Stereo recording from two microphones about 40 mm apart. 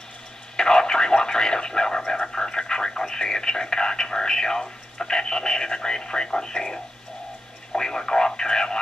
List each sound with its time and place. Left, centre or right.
0.6 s radio: centre
7.7 s speech: centre